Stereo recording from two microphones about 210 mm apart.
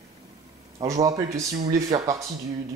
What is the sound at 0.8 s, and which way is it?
Speech, 15° right (ahead or behind).